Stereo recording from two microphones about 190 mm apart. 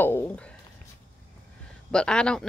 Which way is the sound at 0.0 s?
10° left (ahead or behind).